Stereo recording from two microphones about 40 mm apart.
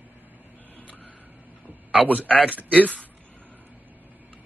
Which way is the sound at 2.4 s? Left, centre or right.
Right.